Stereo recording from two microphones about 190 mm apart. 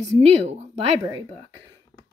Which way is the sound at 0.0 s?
35° right (ahead or behind).